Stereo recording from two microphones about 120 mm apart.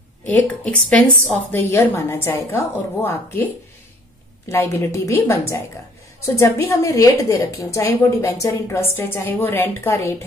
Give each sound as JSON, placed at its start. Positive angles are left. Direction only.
{"t": 0.3, "sound": "a woman's voice", "side_deg": 15}
{"t": 4.5, "sound": "a woman's voice", "side_deg": 25}